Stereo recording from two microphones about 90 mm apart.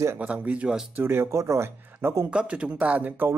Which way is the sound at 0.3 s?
15° right (ahead or behind).